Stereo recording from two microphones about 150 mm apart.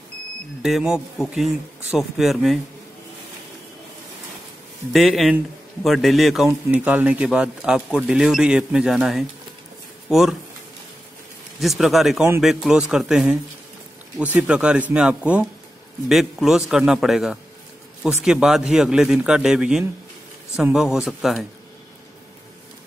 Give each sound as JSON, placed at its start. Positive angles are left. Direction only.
{"t": 0.6, "sound": "speech", "side_deg": 0}
{"t": 4.9, "sound": "speech", "side_deg": 0}
{"t": 11.6, "sound": "speech", "side_deg": 0}